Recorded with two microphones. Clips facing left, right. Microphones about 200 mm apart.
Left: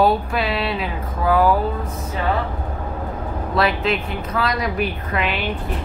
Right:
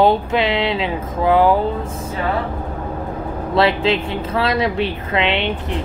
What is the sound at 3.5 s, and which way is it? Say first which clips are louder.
A woman's voice: right 4 dB; 25° right (ahead or behind).